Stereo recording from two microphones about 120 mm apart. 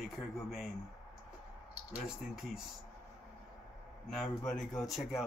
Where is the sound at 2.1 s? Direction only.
5° right (ahead or behind).